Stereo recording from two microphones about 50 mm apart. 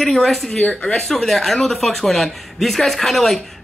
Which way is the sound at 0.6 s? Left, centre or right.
Centre.